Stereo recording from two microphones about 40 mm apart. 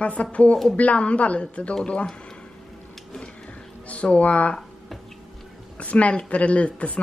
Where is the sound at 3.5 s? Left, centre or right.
Left.